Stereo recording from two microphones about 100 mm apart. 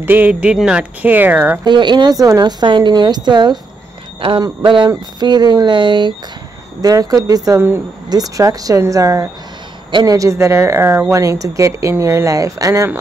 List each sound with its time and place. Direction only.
0.0 s speech: 20° right (ahead or behind)
1.0 s speech: 20° right (ahead or behind)
1.6 s speech: 50° right (ahead or behind)
4.6 s speech: 50° right (ahead or behind)
6.8 s speech: 40° right (ahead or behind)